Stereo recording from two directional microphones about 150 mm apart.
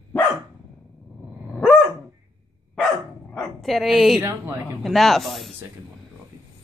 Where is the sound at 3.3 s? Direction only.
Centre (ahead or behind).